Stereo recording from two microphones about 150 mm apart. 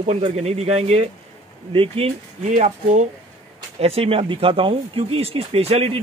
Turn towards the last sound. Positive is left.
turn(degrees=-45)  # may be behind; listen again after turning